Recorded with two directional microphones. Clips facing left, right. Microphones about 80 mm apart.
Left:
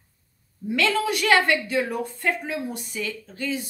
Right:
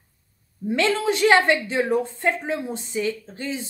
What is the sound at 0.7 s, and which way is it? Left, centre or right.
A woman's voice, right.